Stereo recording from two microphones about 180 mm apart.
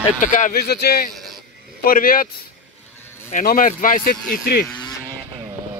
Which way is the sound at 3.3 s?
45° left (ahead or behind).